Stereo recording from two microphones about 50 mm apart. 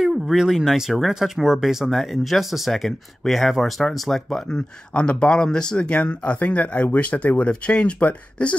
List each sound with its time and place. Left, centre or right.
0.0 s speech: centre
4.5 s speech: left